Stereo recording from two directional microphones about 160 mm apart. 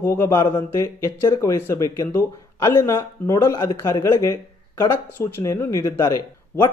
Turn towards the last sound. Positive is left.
turn(degrees=20)  # may be behind; listen again after turning